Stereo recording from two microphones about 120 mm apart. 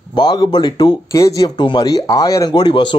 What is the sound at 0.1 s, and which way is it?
Speech, 40° left (ahead or behind).